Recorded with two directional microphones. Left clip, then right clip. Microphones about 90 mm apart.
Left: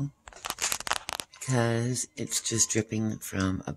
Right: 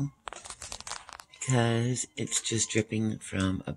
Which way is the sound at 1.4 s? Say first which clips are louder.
Even; 20° right (ahead or behind).